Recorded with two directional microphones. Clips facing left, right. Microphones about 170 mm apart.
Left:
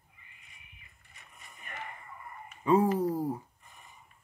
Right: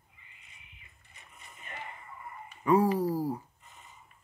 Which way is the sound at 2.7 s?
20° left (ahead or behind).